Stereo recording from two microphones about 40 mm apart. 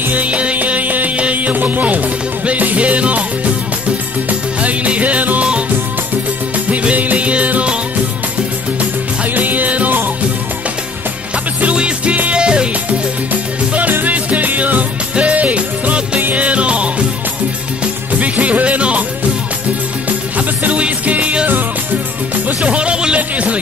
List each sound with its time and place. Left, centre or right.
0.1 s music: right
0.6 s music: right
4.3 s music: right
6.5 s music: right
9.3 s music: right
11.7 s music: right
13.3 s music: right
18.2 s music: right
20.1 s music: right